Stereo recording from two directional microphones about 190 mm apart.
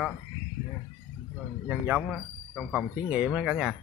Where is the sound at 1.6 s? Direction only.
5° right (ahead or behind).